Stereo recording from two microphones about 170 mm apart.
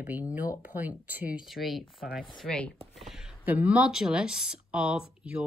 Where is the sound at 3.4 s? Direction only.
10° right (ahead or behind).